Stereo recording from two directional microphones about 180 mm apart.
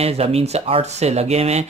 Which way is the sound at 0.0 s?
35° right (ahead or behind).